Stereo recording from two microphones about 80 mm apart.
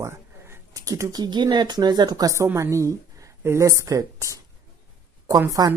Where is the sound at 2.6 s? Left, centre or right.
Right.